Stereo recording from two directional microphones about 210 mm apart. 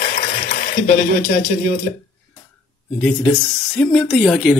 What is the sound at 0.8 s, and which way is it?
Speech, 35° left (ahead or behind).